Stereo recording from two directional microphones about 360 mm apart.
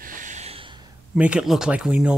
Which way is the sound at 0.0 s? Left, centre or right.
Right.